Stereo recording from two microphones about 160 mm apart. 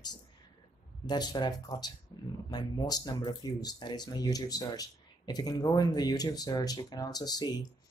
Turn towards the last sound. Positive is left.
turn(degrees=25)  # may be behind; listen again after turning